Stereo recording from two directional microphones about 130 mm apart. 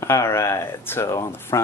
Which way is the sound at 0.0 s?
20° left (ahead or behind).